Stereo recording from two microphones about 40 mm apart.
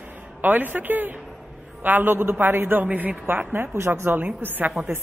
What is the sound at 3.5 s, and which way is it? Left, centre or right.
Speech, right.